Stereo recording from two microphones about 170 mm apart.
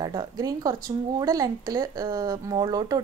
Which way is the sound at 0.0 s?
25° right (ahead or behind).